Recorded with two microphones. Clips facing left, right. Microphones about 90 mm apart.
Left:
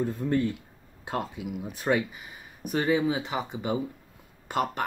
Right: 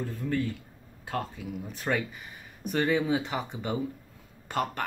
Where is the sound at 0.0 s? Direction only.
25° left (ahead or behind).